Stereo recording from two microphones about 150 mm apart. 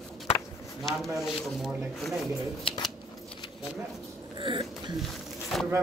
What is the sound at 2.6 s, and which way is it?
Speech, 30° left (ahead or behind).